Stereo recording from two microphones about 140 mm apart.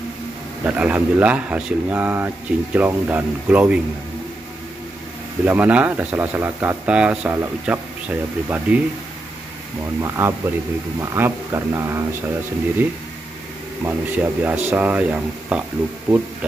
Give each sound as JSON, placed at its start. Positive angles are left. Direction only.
{"t": 0.7, "sound": "speech", "side_deg": -10}
{"t": 5.4, "sound": "speech", "side_deg": -10}
{"t": 10.0, "sound": "speech", "side_deg": -20}
{"t": 13.8, "sound": "speech", "side_deg": -10}